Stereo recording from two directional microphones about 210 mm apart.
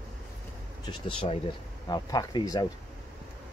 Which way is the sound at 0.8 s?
25° left (ahead or behind).